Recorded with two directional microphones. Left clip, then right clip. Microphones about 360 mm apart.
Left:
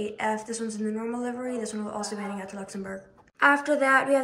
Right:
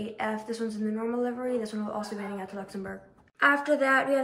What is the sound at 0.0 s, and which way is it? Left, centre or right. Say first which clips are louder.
Speech: left 4 dB; centre.